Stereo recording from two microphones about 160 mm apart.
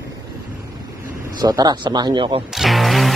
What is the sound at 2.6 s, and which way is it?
Music, centre (ahead or behind).